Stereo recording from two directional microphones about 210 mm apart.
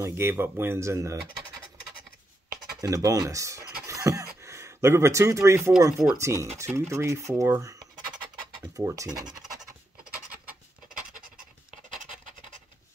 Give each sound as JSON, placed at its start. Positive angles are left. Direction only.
{"t": 0.0, "sound": "speech", "side_deg": -10}
{"t": 2.8, "sound": "speech", "side_deg": -15}
{"t": 3.8, "sound": "a sound", "side_deg": -15}
{"t": 4.4, "sound": "speech", "side_deg": -15}